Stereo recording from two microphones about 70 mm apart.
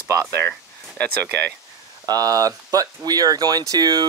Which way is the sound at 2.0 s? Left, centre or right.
Right.